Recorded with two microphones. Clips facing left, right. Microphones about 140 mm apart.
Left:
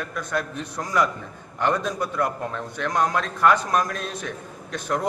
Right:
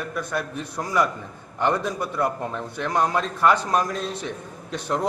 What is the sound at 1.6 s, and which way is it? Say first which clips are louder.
A man's voice: even; 15° right (ahead or behind).